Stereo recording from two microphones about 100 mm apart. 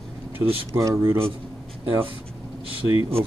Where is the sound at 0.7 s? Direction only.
30° right (ahead or behind).